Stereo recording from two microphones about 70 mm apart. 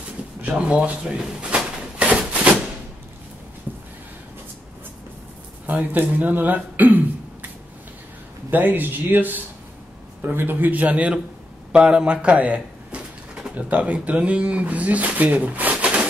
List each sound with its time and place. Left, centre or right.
0.4 s drawer open or close: centre
5.7 s speech: right
8.5 s speech: right